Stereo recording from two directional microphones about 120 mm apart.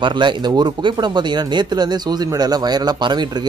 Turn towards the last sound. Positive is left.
turn(degrees=-40)  # may be behind; listen again after turning